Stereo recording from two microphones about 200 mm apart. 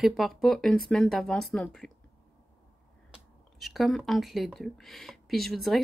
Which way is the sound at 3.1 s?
Centre (ahead or behind).